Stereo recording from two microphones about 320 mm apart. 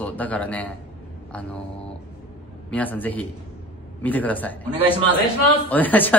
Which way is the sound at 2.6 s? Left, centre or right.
Centre.